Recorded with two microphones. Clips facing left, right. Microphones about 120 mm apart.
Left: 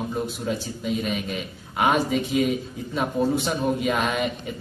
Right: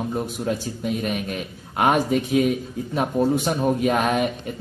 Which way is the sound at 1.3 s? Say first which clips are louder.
Right 1 dB; 45° right (ahead or behind).